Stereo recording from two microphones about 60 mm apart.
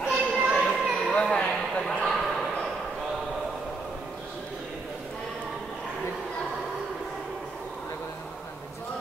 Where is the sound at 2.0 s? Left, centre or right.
Centre.